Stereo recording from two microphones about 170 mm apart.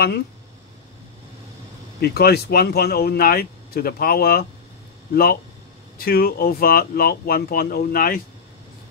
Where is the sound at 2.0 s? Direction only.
70° left (ahead or behind).